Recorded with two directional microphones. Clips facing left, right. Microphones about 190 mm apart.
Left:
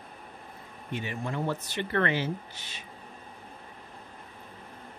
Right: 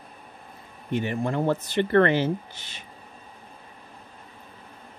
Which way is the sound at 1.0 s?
55° right (ahead or behind).